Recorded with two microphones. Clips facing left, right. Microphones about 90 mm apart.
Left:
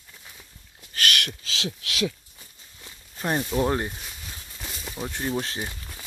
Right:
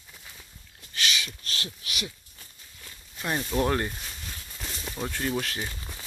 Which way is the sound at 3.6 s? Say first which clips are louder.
Left 1 dB; 20° left (ahead or behind).